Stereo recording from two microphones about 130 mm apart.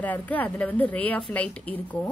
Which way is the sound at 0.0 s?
10° left (ahead or behind).